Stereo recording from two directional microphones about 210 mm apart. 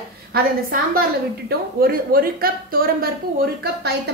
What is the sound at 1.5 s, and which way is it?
A woman's voice, 45° right (ahead or behind).